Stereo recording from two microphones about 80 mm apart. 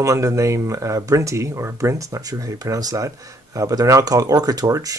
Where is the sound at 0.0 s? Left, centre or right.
Right.